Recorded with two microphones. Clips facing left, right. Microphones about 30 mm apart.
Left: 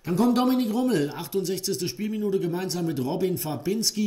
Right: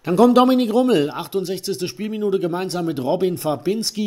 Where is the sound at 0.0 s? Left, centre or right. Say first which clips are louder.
Right 9 dB; right.